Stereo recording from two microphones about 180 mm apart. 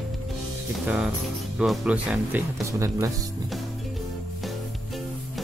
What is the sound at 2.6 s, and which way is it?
Speech, 15° right (ahead or behind).